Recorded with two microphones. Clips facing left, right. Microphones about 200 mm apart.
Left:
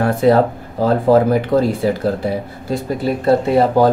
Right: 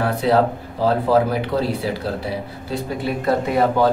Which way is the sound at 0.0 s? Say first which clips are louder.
Left 4 dB; 50° left (ahead or behind).